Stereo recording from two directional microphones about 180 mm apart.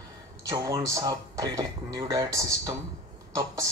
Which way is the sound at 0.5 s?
20° right (ahead or behind).